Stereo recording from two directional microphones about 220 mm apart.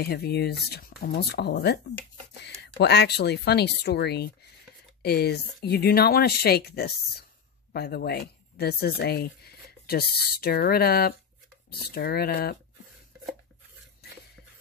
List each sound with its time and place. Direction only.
0.0 s speech: 45° left (ahead or behind)